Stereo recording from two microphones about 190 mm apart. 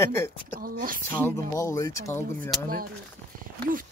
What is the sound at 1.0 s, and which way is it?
Speech, 10° left (ahead or behind).